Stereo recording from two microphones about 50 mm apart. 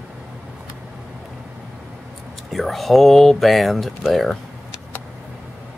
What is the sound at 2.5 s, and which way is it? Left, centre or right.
Speech, centre.